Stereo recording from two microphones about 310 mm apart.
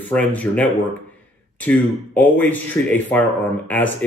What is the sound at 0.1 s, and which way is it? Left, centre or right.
Speech, centre.